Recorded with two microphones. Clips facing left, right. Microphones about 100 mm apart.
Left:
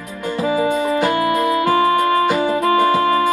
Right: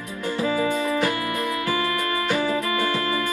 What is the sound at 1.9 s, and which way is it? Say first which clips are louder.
Music: left 10 dB; 45° left (ahead or behind).